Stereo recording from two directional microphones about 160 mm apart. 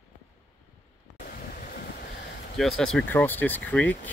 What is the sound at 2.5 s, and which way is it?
Speech, centre (ahead or behind).